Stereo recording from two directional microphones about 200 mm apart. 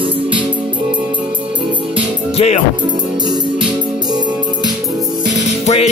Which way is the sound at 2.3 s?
30° left (ahead or behind).